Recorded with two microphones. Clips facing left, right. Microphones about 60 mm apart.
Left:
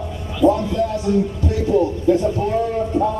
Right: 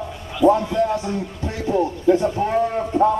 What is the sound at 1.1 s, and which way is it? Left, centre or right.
Speech, right.